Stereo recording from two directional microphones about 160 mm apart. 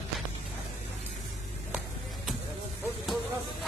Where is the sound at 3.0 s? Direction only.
Centre (ahead or behind).